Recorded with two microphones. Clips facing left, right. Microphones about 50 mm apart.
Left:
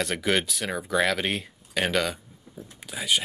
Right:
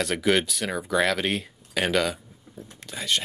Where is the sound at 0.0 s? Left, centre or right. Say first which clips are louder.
Right 2 dB; centre.